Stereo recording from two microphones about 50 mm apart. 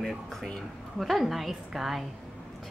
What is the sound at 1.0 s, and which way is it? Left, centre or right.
A woman's voice, centre.